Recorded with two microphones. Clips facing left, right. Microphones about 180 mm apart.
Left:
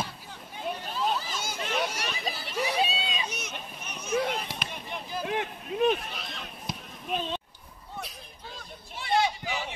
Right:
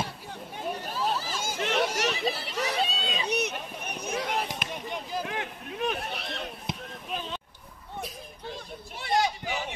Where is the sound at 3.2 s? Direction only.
65° right (ahead or behind).